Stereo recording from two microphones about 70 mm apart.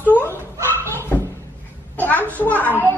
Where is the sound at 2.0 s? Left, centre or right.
Left.